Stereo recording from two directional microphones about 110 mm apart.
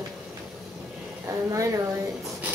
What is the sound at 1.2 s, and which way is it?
Speech, 30° right (ahead or behind).